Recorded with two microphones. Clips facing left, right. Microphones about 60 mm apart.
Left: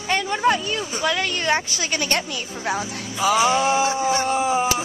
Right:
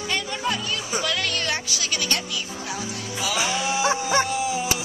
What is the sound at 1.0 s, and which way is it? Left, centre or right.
A woman's voice, centre.